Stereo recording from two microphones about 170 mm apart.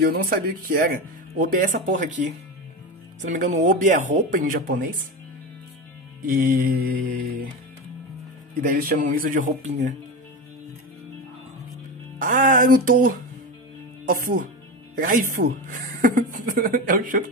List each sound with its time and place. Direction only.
0.0 s speech: 65° right (ahead or behind); by 2.1 s 50° right (ahead or behind)
3.2 s speech: 45° right (ahead or behind)
6.2 s speech: 60° right (ahead or behind)
8.7 s speech: 55° right (ahead or behind)
12.2 s speech: 50° right (ahead or behind)